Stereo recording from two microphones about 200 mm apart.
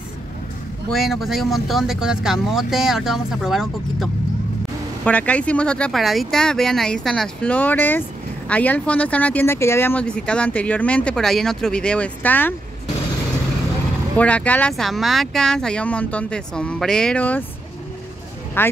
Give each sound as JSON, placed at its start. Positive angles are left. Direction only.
{"t": 0.8, "sound": "speech", "side_deg": 0}
{"t": 14.1, "sound": "speech", "side_deg": 5}
{"t": 18.6, "sound": "speech", "side_deg": 10}